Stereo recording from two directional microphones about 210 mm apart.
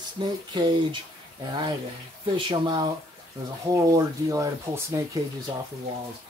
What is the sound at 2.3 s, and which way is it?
Speech, 20° right (ahead or behind).